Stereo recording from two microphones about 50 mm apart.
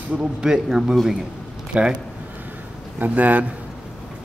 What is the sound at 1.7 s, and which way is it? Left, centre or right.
Speech, right.